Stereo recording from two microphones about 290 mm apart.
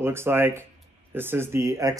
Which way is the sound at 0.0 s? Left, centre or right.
Centre.